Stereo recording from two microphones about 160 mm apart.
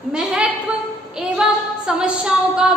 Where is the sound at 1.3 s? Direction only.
5° right (ahead or behind).